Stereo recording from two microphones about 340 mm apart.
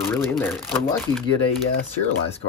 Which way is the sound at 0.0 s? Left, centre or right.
Centre.